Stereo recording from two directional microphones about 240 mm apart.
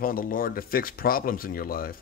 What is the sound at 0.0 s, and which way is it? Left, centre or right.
Speech, left.